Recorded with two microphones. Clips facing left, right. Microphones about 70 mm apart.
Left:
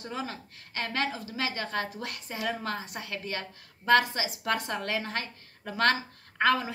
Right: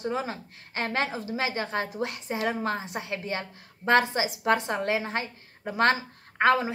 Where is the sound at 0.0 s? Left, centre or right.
Right.